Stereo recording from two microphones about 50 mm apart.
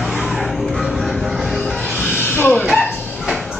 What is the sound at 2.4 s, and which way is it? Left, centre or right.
Dog, left.